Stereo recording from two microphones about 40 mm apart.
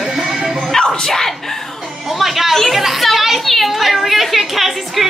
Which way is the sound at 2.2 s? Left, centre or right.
Centre.